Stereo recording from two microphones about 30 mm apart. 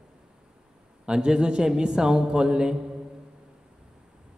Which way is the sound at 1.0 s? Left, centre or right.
Right.